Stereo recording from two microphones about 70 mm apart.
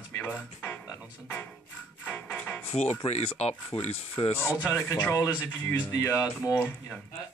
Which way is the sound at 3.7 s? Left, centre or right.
Left.